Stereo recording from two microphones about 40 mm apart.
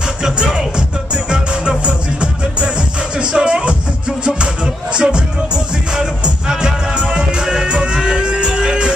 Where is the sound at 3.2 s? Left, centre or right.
Right.